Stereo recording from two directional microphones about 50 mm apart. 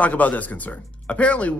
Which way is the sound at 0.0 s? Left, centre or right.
Left.